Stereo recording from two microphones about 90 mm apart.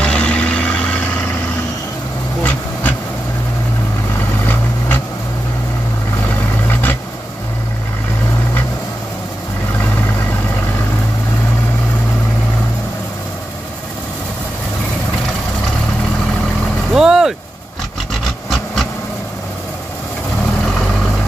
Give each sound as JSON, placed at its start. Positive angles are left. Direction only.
{"t": 0.0, "sound": "vehicle", "side_deg": 10}
{"t": 2.4, "sound": "a sound", "side_deg": 20}
{"t": 4.5, "sound": "vehicle", "side_deg": 20}
{"t": 6.3, "sound": "vehicle", "side_deg": 20}
{"t": 16.9, "sound": "vehicle", "side_deg": -5}